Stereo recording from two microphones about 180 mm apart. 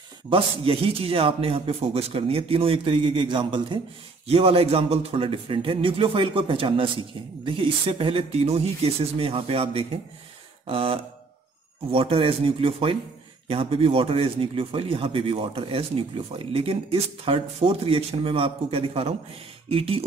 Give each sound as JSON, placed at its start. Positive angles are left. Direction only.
{"t": 0.3, "sound": "a man's voice", "side_deg": -30}